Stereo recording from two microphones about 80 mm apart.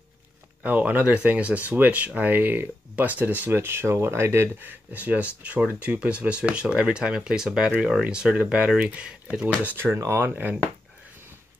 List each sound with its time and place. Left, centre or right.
0.7 s speech: centre